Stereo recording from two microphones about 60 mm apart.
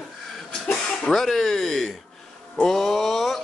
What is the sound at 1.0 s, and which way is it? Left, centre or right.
Speech, centre.